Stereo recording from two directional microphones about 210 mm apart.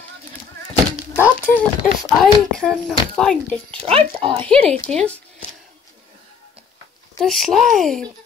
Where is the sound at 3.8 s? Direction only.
30° right (ahead or behind).